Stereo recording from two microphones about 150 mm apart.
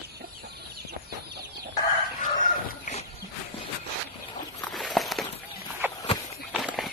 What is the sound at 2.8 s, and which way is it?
Dog, 45° left (ahead or behind).